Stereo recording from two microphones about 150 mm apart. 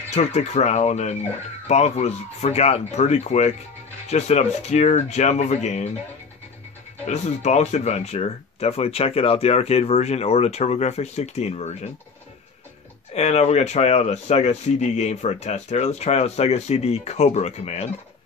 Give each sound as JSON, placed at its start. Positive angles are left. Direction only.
{"t": 0.1, "sound": "speech", "side_deg": 50}
{"t": 7.1, "sound": "speech", "side_deg": 50}
{"t": 13.1, "sound": "speech", "side_deg": 45}